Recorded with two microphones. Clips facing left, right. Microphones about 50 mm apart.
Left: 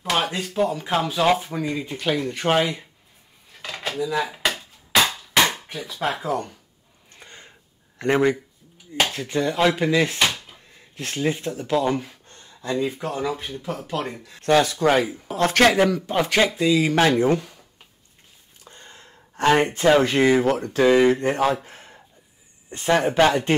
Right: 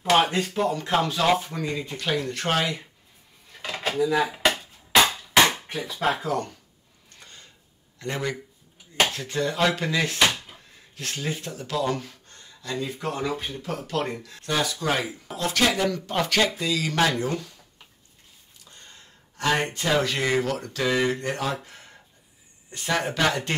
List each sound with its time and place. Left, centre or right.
0.0 s speech: centre
3.5 s dishes: centre
5.7 s speech: centre
6.0 s speech: centre
7.2 s a sound: left
8.0 s speech: left
9.1 s speech: centre
12.3 s a sound: left
13.0 s speech: centre
14.4 s speech: left
15.9 s speech: centre; by 17.6 s left
18.6 s a sound: left
20.4 s speech: left